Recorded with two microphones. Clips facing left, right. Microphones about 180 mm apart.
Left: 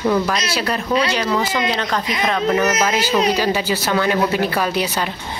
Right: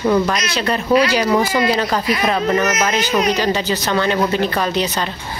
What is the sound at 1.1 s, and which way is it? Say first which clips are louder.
Speech: right 4 dB; 15° right (ahead or behind).